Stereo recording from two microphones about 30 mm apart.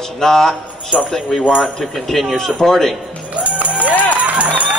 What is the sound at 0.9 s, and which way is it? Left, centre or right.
Speech, right.